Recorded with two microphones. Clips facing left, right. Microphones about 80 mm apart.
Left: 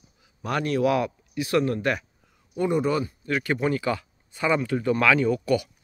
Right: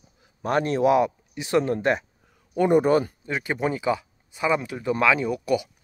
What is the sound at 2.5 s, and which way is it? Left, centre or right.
Speech, right.